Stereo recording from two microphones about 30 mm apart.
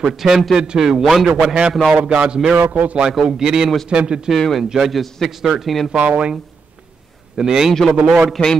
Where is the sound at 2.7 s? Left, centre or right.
Right.